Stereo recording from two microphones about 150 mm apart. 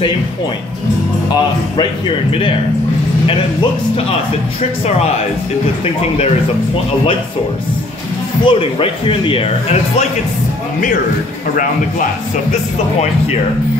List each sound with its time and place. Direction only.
1.3 s speech: 30° left (ahead or behind)
3.9 s speech: 40° left (ahead or behind)
8.5 s speech: 40° left (ahead or behind)